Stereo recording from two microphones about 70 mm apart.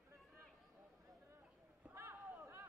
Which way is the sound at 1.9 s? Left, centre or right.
Right.